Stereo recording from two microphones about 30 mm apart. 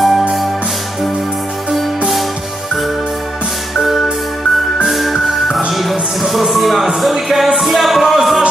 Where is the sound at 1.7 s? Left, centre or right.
Centre.